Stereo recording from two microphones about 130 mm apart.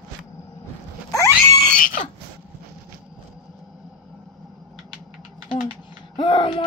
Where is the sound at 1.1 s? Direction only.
25° left (ahead or behind).